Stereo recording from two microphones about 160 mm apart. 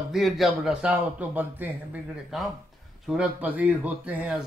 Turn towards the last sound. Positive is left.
turn(degrees=-5)  # may be behind; listen again after turning